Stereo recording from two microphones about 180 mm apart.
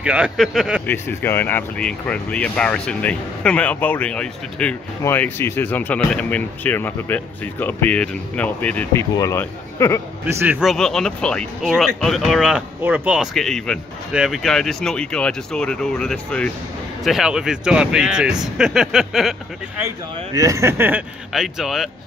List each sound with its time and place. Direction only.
0.0 s speech: 5° right (ahead or behind)
0.8 s speech: 10° left (ahead or behind)
10.2 s speech: 10° right (ahead or behind)
20.3 s speech: 20° right (ahead or behind)
21.3 s speech: centre (ahead or behind)